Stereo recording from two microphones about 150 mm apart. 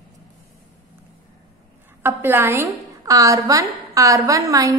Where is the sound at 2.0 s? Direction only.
15° right (ahead or behind).